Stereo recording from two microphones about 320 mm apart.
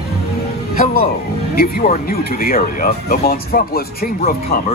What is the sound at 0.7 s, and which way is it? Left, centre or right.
Speech, left.